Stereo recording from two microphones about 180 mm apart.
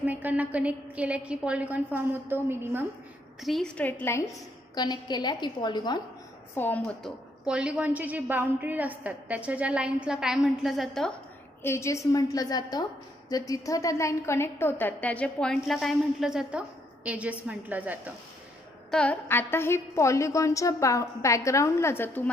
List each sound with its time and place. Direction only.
0.0 s a woman's voice: 10° right (ahead or behind)
3.3 s a woman's voice: centre (ahead or behind); by 5.9 s 25° left (ahead or behind)
6.5 s a woman's voice: 10° left (ahead or behind)
7.4 s a woman's voice: 5° right (ahead or behind)
11.6 s a woman's voice: 15° left (ahead or behind); by 18.1 s 10° right (ahead or behind)
18.9 s a woman's voice: 5° left (ahead or behind)